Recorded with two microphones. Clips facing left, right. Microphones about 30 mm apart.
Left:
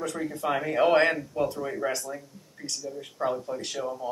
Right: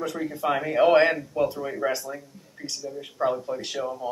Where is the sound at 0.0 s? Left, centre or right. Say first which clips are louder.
Right 2 dB; centre.